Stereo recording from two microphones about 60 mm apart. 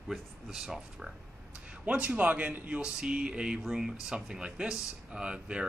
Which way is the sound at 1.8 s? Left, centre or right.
Right.